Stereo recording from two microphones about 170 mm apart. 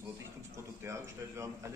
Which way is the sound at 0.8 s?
15° right (ahead or behind).